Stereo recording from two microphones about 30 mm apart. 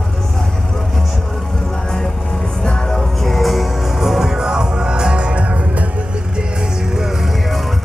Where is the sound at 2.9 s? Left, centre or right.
Centre; by 5.3 s right.